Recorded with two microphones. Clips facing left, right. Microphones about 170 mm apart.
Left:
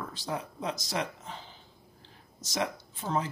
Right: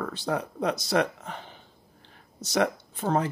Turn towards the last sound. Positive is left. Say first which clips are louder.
# right 6 dB
turn(degrees=-60)  # may be behind; listen again after turning